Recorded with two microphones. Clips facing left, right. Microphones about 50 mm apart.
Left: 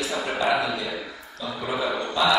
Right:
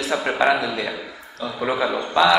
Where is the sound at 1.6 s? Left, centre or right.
Right.